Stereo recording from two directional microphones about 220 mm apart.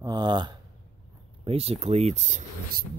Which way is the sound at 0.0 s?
20° right (ahead or behind).